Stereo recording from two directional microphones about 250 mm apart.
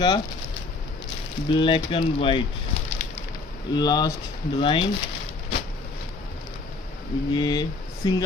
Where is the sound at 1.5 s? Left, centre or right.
Centre.